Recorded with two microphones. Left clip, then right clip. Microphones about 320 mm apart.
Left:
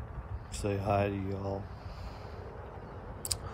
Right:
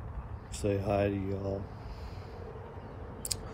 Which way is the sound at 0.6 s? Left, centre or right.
Centre.